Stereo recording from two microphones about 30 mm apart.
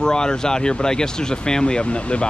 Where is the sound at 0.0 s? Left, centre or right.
Left.